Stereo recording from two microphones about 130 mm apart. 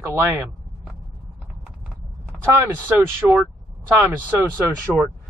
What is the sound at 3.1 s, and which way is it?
Speech, 15° right (ahead or behind).